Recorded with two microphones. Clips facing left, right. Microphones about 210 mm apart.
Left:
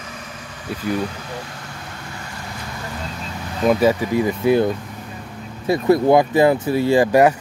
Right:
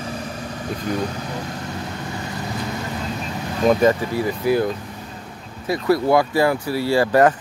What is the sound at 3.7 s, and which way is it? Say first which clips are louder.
Speech: left 1 dB; 10° left (ahead or behind).